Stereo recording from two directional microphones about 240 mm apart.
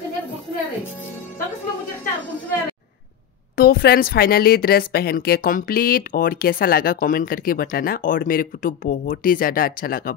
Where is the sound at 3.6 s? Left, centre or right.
Left.